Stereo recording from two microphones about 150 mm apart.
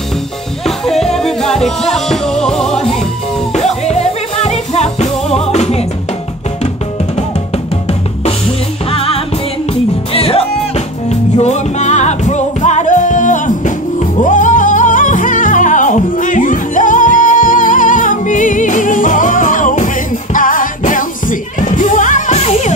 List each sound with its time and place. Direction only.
0.7 s music: centre (ahead or behind)
3.5 s music: 50° left (ahead or behind)
8.9 s music: 40° left (ahead or behind)